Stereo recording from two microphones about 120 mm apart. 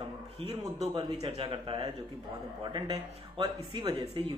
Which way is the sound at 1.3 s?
45° right (ahead or behind).